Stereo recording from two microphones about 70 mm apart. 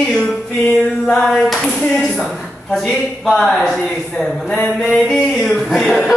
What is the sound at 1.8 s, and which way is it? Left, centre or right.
Speech, centre.